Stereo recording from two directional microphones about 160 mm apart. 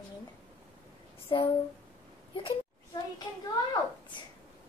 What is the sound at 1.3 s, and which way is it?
Speech, 30° left (ahead or behind).